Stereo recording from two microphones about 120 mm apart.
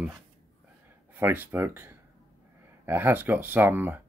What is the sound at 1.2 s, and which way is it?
Speech, 15° right (ahead or behind).